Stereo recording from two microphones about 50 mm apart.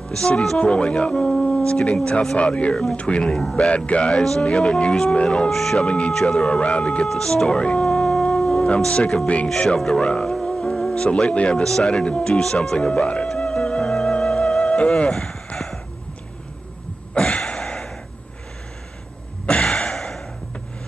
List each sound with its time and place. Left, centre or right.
0.1 s speech: centre
5.5 s speech: centre
5.9 s speech: left
6.1 s speech: centre
6.4 s speech: left
7.1 s speech: centre
10.4 s music: centre
11.0 s speech: left
13.3 s music: centre
17.1 s a sound: left
19.4 s gasp: centre